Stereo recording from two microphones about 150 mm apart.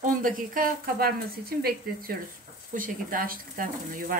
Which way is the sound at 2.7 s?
65° right (ahead or behind).